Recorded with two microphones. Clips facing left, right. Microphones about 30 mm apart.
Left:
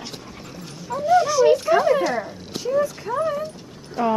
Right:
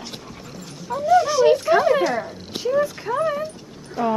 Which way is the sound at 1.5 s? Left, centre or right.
Centre.